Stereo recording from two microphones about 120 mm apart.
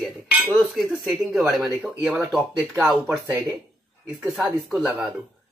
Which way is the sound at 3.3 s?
15° right (ahead or behind).